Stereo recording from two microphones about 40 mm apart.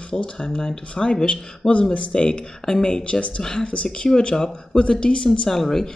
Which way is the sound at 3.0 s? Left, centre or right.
Left.